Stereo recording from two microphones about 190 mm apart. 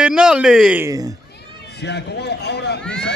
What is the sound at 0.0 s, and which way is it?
Speech, 5° right (ahead or behind).